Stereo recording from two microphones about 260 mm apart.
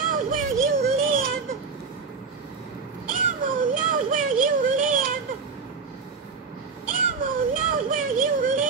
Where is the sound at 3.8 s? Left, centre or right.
Right.